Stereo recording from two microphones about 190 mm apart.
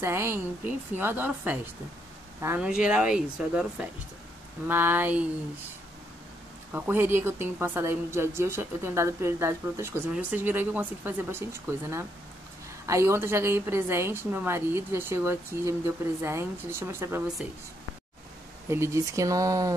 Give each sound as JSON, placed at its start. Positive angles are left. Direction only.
{"t": 0.0, "sound": "a woman's voice", "side_deg": -15}
{"t": 6.7, "sound": "a woman's voice", "side_deg": -10}
{"t": 18.7, "sound": "a woman's voice", "side_deg": -15}